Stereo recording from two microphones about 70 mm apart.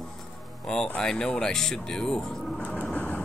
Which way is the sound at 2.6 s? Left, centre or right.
Centre.